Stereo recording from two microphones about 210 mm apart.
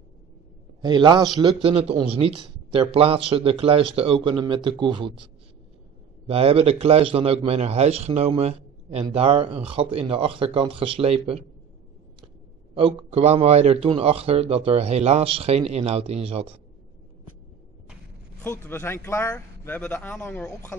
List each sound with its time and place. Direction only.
0.7 s a man's voice: 20° right (ahead or behind)
6.2 s a man's voice: 30° right (ahead or behind)
12.7 s a man's voice: 30° right (ahead or behind)
18.7 s speech: 10° left (ahead or behind)